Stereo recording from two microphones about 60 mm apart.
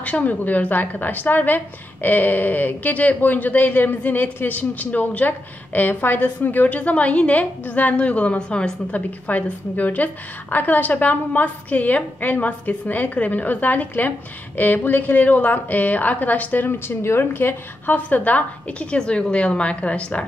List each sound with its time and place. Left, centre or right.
0.0 s a woman's voice: left
9.3 s a woman's voice: left